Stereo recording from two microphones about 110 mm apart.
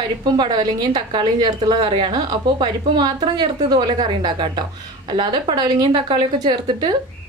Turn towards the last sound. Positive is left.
turn(degrees=-40)  # may be behind; listen again after turning